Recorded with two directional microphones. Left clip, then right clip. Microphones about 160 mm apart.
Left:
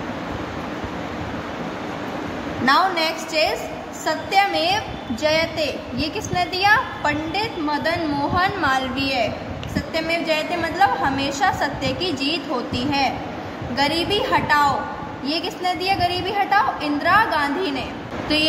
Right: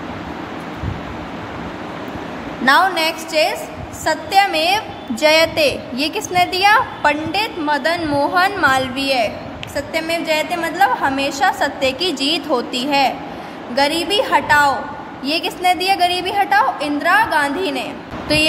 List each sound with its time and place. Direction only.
2.6 s a woman's voice: 45° right (ahead or behind)